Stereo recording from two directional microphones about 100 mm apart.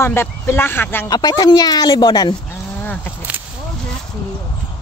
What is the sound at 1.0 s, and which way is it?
Speech, 40° left (ahead or behind).